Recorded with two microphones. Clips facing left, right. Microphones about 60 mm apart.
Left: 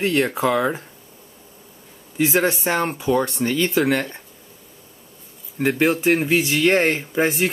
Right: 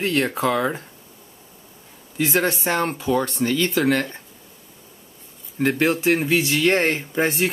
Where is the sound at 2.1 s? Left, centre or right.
Centre.